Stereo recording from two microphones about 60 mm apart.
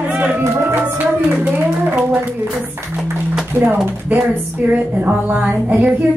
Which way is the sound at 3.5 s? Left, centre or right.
Right.